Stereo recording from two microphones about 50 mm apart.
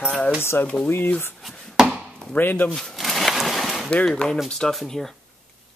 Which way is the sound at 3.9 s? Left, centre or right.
Centre.